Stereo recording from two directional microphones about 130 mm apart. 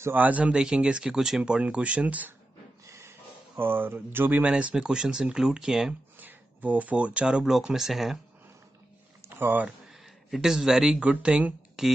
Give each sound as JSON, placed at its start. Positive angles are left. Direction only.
{"t": 0.0, "sound": "speech", "side_deg": -15}
{"t": 2.9, "sound": "a sound", "side_deg": -20}
{"t": 4.7, "sound": "speech", "side_deg": -5}
{"t": 9.2, "sound": "speech", "side_deg": -15}
{"t": 9.8, "sound": "speech", "side_deg": 0}